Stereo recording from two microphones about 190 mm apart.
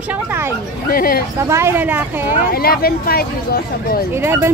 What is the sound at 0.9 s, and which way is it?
Speech, 50° left (ahead or behind).